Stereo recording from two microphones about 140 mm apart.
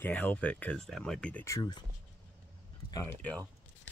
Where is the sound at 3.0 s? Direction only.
10° left (ahead or behind).